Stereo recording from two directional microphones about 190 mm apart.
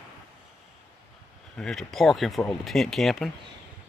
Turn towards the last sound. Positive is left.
turn(degrees=0)  # may be behind; listen again after turning